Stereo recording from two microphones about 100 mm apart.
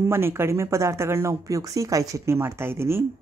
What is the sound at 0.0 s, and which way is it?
Speech, 25° right (ahead or behind).